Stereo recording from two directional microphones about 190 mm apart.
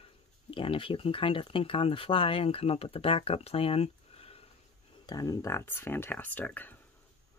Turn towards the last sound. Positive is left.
turn(degrees=10)  # may be behind; listen again after turning